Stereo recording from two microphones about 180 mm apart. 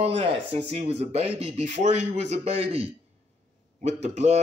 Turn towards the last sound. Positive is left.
turn(degrees=-40)  # may be behind; listen again after turning